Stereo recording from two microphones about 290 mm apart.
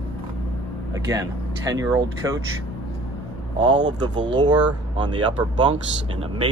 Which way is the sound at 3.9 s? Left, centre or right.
Centre.